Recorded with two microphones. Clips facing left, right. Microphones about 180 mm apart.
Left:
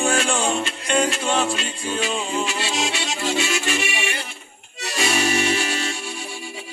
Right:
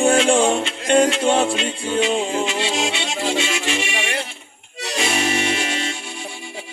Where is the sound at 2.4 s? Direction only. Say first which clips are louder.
Right 3 dB; 25° right (ahead or behind).